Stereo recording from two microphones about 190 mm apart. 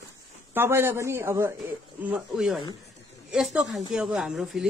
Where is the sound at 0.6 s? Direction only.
15° right (ahead or behind).